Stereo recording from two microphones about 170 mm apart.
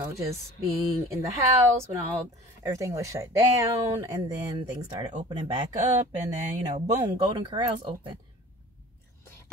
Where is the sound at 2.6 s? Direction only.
15° right (ahead or behind).